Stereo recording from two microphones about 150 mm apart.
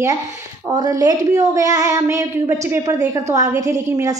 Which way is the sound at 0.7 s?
25° right (ahead or behind).